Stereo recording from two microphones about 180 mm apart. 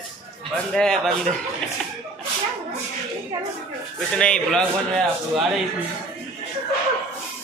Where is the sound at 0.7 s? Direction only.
5° left (ahead or behind).